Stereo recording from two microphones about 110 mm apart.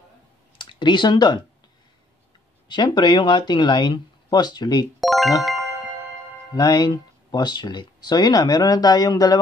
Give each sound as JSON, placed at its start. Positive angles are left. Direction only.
{"t": 0.6, "sound": "speech", "side_deg": 45}
{"t": 2.7, "sound": "speech", "side_deg": 45}
{"t": 5.0, "sound": "music", "side_deg": 0}
{"t": 6.5, "sound": "speech", "side_deg": 35}